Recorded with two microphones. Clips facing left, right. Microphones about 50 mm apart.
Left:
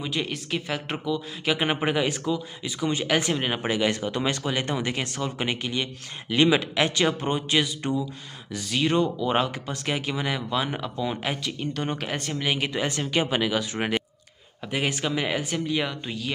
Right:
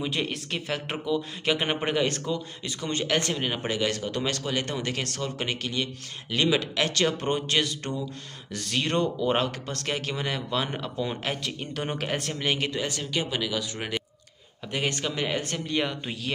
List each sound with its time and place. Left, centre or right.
0.0 s a man's voice: centre
12.8 s speech: left
14.7 s a man's voice: centre